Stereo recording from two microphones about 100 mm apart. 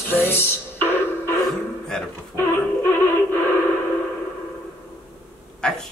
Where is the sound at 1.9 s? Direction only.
5° left (ahead or behind).